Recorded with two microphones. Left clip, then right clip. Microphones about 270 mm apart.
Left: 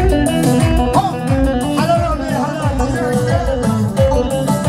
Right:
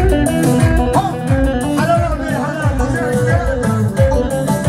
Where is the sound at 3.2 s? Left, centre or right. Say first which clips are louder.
Even; left.